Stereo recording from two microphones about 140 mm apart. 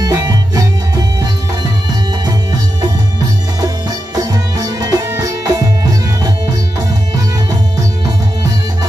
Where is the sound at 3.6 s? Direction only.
25° right (ahead or behind).